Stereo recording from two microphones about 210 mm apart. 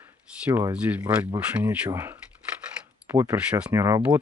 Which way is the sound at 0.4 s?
5° right (ahead or behind).